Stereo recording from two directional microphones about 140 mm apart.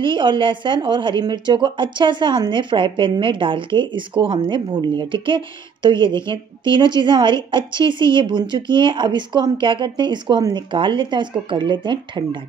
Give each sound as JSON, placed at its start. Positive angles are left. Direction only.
{"t": 0.0, "sound": "a woman's voice", "side_deg": -35}